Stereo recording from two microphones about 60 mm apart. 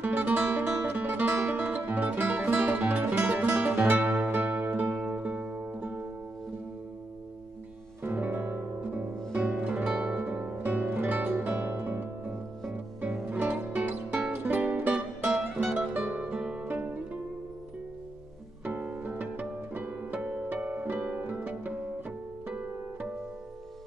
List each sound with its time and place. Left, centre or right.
0.0 s music: centre
8.0 s music: right
9.0 s music: right
18.6 s music: right
21.1 s harp: right